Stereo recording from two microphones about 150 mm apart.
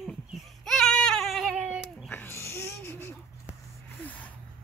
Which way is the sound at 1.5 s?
5° right (ahead or behind).